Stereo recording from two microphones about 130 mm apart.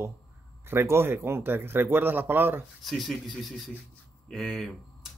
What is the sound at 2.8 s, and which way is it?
Speech, centre (ahead or behind).